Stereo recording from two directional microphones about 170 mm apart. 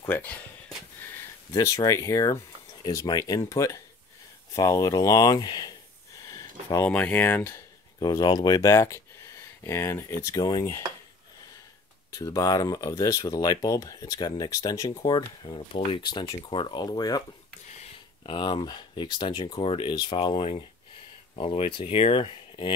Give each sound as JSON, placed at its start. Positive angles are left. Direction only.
{"t": 0.1, "sound": "speech", "side_deg": 10}
{"t": 6.7, "sound": "speech", "side_deg": 10}
{"t": 8.0, "sound": "speech", "side_deg": 20}
{"t": 12.2, "sound": "speech", "side_deg": 20}
{"t": 17.6, "sound": "a sound", "side_deg": 40}
{"t": 18.3, "sound": "speech", "side_deg": 25}